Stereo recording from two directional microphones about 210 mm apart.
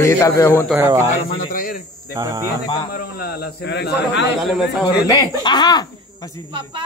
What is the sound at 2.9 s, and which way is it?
Speech, 45° left (ahead or behind).